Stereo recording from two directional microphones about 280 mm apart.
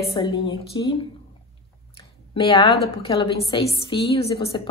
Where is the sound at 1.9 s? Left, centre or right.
Centre.